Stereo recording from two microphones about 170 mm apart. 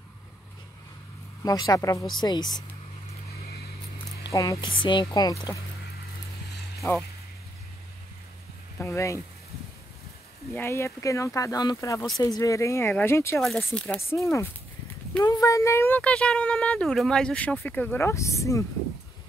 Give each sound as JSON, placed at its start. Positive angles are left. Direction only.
{"t": 1.4, "sound": "speech", "side_deg": 20}
{"t": 4.2, "sound": "speech", "side_deg": 20}
{"t": 6.8, "sound": "speech", "side_deg": 15}
{"t": 8.7, "sound": "speech", "side_deg": 15}
{"t": 10.5, "sound": "speech", "side_deg": 15}
{"t": 13.4, "sound": "speech", "side_deg": 0}
{"t": 15.2, "sound": "speech", "side_deg": 20}